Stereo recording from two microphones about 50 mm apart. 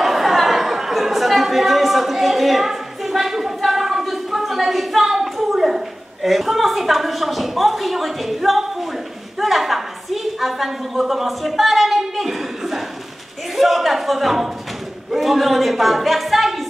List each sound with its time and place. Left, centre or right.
0.0 s chatter: centre
6.2 s a sound: centre
13.6 s a man's voice: centre